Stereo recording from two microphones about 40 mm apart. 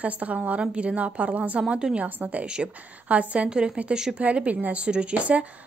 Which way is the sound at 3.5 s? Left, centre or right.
Centre.